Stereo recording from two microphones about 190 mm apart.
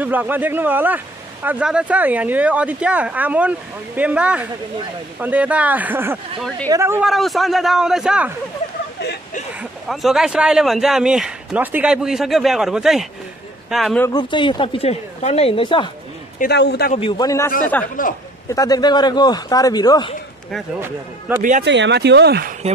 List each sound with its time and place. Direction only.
0.0 s speech: 10° right (ahead or behind)
7.1 s speech: centre (ahead or behind)
9.6 s speech: centre (ahead or behind)
14.0 s speech: 25° left (ahead or behind)
16.3 s a man's voice: 60° left (ahead or behind)
17.2 s a man's voice: 15° left (ahead or behind)
18.0 s speech: 45° left (ahead or behind)
18.5 s speech: 20° left (ahead or behind)
21.4 s speech: 45° right (ahead or behind)
21.6 s speech: 70° right (ahead or behind)